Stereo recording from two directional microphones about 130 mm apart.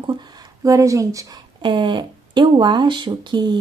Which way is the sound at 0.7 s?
25° right (ahead or behind).